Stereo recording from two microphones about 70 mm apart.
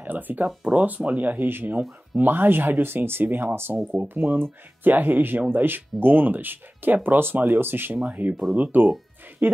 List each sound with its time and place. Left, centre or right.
0.0 s speech: right